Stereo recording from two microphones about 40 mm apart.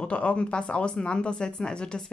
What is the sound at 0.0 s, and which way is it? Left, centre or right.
Speech, left.